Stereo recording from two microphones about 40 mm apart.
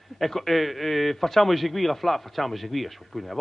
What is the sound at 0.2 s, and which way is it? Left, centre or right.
A man's voice, centre.